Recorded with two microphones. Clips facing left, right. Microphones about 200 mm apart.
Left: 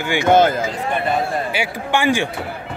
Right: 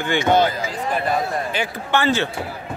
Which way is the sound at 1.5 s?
10° left (ahead or behind).